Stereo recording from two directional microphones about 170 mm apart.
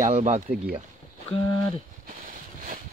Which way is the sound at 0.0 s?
45° right (ahead or behind).